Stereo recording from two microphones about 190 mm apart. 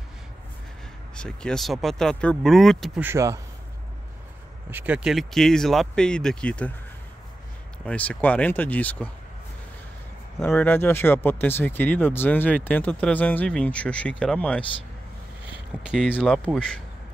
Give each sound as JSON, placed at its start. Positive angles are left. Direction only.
{"t": 1.1, "sound": "speech", "side_deg": 5}
{"t": 4.6, "sound": "speech", "side_deg": -10}
{"t": 7.8, "sound": "speech", "side_deg": 5}
{"t": 10.4, "sound": "speech", "side_deg": 10}
{"t": 15.8, "sound": "speech", "side_deg": -5}